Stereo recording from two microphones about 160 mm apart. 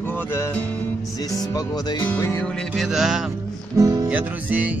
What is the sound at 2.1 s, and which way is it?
Music, 15° left (ahead or behind).